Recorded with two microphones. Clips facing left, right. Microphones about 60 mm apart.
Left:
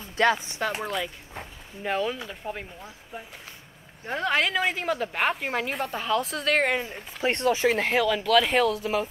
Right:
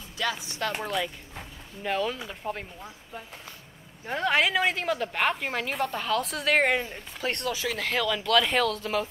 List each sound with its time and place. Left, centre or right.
0.2 s speech: left
0.5 s speech: centre
0.8 s speech: centre
2.1 s a woman's voice: centre
4.0 s a woman's voice: centre
7.2 s speech: left
7.9 s speech: centre